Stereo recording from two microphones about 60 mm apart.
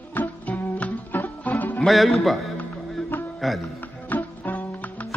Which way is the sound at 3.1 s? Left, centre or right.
Left.